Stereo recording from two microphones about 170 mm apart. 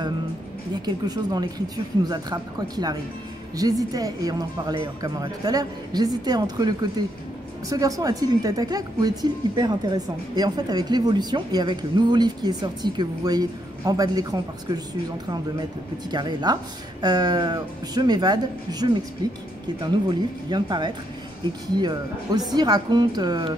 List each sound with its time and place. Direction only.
0.8 s speech: 25° right (ahead or behind)
16.1 s speech: 25° right (ahead or behind)